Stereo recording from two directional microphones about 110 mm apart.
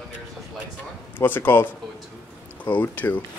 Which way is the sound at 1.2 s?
15° left (ahead or behind).